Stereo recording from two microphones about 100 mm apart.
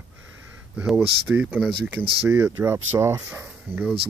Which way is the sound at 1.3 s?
15° right (ahead or behind).